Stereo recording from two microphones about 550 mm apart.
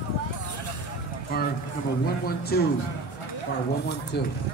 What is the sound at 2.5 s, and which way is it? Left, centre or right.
Speech, centre.